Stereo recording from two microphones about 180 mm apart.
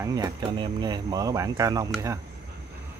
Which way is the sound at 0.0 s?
20° right (ahead or behind).